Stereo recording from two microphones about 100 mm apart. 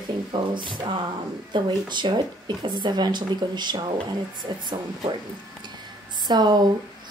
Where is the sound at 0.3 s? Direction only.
55° right (ahead or behind).